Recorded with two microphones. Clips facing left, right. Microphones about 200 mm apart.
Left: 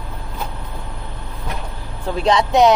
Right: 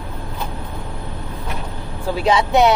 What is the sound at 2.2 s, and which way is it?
Speech, 5° right (ahead or behind).